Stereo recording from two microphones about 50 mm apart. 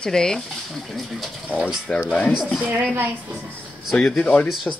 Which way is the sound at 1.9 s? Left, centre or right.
Left.